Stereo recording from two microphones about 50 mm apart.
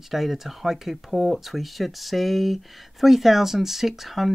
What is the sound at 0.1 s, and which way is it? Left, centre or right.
Speech, centre.